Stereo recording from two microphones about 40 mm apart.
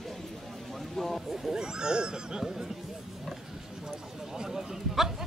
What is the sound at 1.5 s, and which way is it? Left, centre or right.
Speech, centre.